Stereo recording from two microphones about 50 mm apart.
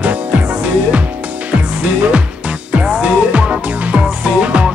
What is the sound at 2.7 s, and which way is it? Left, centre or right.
Music, right.